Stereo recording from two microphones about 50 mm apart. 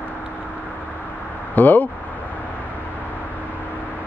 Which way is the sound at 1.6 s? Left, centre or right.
Left.